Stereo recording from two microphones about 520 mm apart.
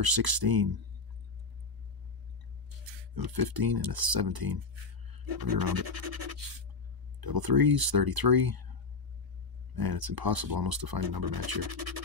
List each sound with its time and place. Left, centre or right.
0.0 s speech: right
3.2 s speech: right
5.1 s a sound: right
5.5 s speech: right
9.8 s speech: right